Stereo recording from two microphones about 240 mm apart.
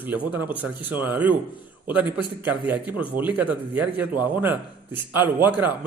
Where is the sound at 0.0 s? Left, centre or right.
Centre.